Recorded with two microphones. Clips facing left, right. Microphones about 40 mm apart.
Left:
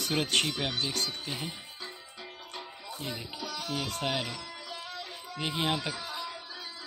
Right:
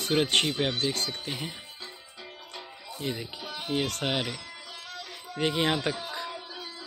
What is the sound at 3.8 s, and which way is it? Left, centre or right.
Speech, right.